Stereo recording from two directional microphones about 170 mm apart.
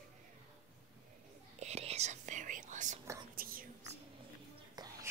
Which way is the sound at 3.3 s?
60° right (ahead or behind).